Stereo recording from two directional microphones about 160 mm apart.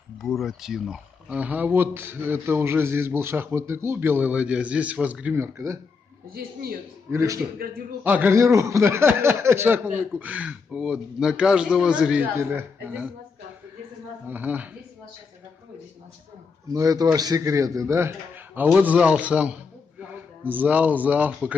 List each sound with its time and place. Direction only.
0.2 s speech: centre (ahead or behind); by 5.8 s 20° right (ahead or behind)
6.3 s a man's voice: 65° right (ahead or behind)
7.1 s speech: 15° right (ahead or behind)
7.5 s a man's voice: 65° right (ahead or behind)
8.0 s speech: 10° right (ahead or behind)
14.2 s speech: 10° right (ahead or behind)
16.7 s a man's voice: 20° right (ahead or behind)